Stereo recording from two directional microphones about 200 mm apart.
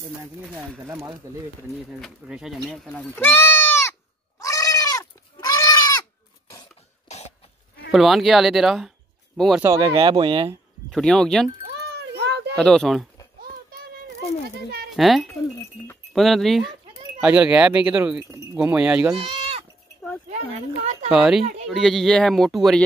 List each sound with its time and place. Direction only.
0.6 s speech: 10° right (ahead or behind)
1.9 s speech: centre (ahead or behind)
4.4 s goat: 15° left (ahead or behind)
7.9 s speech: centre (ahead or behind)
9.6 s speech: 20° right (ahead or behind)
10.9 s speech: centre (ahead or behind)
12.1 s a sound: 60° right (ahead or behind)
12.5 s speech: 5° left (ahead or behind)
15.0 s speech: centre (ahead or behind)
19.1 s sheep: 30° right (ahead or behind)
21.1 s speech: centre (ahead or behind)